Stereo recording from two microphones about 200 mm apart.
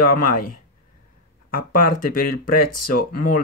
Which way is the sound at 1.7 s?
45° left (ahead or behind).